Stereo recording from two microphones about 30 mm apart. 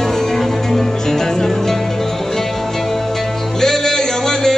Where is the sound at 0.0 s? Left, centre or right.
Centre.